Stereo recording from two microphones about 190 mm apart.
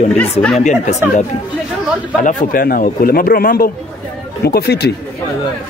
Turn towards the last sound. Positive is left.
turn(degrees=55)  # may be behind; listen again after turning